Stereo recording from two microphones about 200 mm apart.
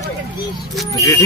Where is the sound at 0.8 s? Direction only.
15° left (ahead or behind).